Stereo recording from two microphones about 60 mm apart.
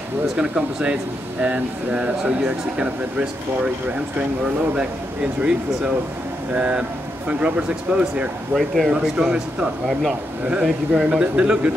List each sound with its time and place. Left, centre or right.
0.4 s a man's voice: centre
6.5 s speech: right
8.5 s speech: centre
8.9 s a man's voice: centre